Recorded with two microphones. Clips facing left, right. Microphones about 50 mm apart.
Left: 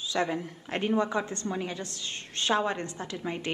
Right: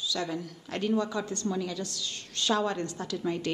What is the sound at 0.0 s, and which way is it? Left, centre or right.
A woman's voice, left.